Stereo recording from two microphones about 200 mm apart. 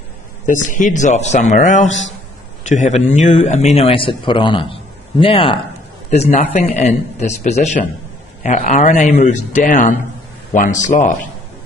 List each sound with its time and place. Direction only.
0.5 s a man's voice: 40° left (ahead or behind)